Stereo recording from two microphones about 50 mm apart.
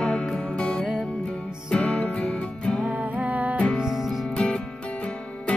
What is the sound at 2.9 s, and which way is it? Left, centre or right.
Music, right.